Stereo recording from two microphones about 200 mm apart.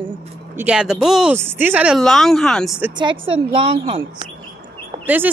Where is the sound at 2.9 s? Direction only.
25° right (ahead or behind).